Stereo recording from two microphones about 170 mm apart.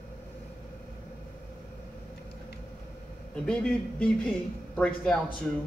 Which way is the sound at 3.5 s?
5° left (ahead or behind).